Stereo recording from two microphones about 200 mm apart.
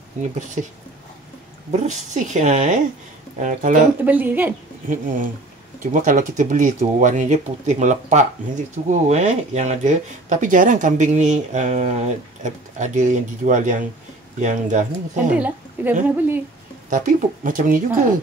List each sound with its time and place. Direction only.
1.7 s speech: 35° right (ahead or behind)
4.0 s a woman's voice: 10° right (ahead or behind)
4.8 s speech: 40° right (ahead or behind)
15.3 s a woman's voice: 10° right (ahead or behind)
16.9 s speech: 40° right (ahead or behind)